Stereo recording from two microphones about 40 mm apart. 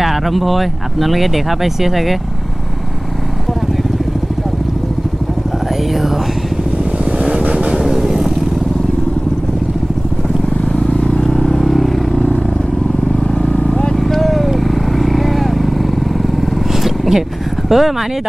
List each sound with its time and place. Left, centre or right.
0.0 s speech: centre
6.8 s vehicle: right
7.7 s vehicle: centre
11.0 s vehicle: left
11.2 s vehicle: centre
13.3 s vehicle: centre
13.9 s vehicle: centre
16.8 s a sound: centre
17.6 s speech: centre